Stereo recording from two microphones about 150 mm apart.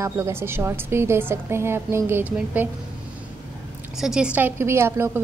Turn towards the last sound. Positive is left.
turn(degrees=-15)  # may be behind; listen again after turning